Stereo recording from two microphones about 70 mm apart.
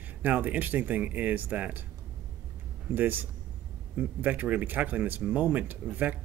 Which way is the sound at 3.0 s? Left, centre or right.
Right.